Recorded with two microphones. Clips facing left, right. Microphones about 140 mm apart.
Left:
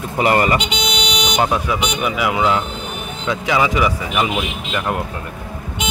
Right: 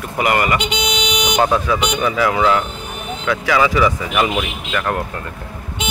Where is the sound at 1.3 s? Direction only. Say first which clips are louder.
Right 2 dB; 15° left (ahead or behind).